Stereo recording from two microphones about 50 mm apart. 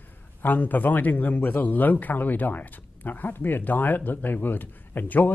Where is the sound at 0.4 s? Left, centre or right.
Left.